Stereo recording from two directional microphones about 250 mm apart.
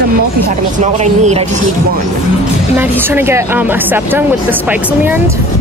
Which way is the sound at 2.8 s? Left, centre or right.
Centre.